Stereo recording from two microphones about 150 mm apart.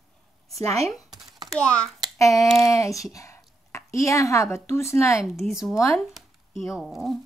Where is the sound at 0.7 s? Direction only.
45° right (ahead or behind).